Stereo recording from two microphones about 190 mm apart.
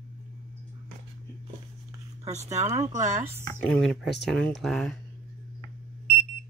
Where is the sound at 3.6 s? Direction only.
Centre (ahead or behind).